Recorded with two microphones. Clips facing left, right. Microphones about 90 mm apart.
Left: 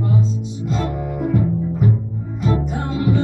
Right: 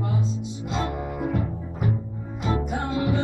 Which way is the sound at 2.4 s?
10° right (ahead or behind).